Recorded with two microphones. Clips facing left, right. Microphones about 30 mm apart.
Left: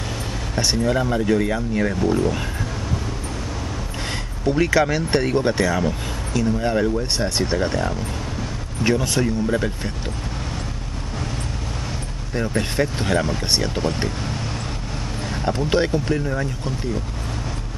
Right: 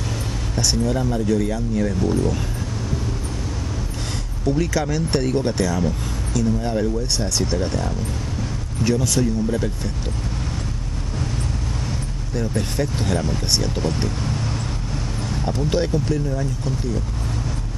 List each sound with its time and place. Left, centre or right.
0.6 s speech: left
4.5 s speech: left
12.4 s speech: left